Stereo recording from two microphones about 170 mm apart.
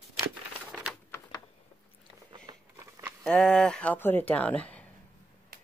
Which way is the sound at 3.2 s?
5° left (ahead or behind).